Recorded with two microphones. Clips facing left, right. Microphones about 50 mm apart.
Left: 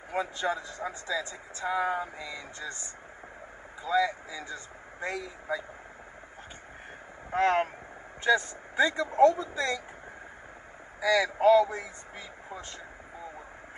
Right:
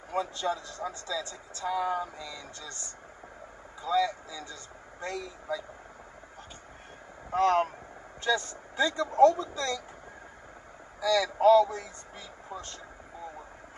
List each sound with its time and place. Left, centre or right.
0.1 s speech: left
7.2 s speech: left
11.0 s speech: left